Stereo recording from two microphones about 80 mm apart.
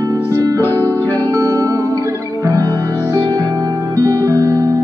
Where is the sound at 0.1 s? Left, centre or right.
Right.